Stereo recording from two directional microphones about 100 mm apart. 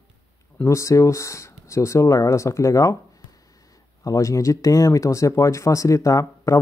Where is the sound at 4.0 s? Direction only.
30° left (ahead or behind).